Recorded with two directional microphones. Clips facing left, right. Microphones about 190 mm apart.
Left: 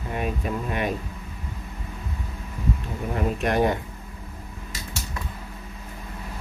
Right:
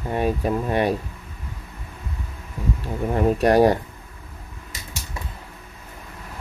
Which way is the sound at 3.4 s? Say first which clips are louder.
Right 6 dB; 35° right (ahead or behind).